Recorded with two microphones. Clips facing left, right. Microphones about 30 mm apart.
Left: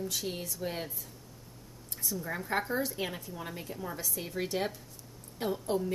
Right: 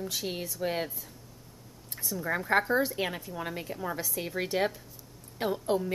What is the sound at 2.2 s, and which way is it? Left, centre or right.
A woman's voice, right.